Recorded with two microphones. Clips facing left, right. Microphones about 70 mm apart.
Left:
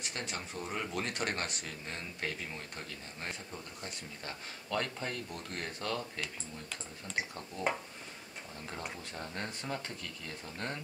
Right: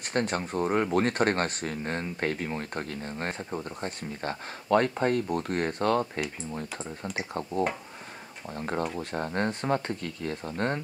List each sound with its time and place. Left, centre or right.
0.0 s speech: right
8.5 s speech: right